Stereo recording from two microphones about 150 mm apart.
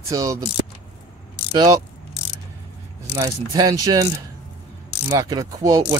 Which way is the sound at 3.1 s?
25° right (ahead or behind).